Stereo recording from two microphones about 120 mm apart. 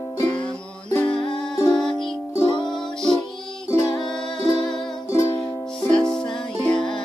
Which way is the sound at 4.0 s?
5° left (ahead or behind).